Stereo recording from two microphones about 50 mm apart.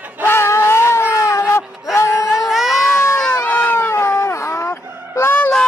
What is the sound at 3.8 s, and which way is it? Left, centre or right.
Honk, left.